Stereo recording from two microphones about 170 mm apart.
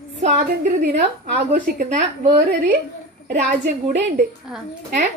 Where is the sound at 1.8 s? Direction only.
45° right (ahead or behind).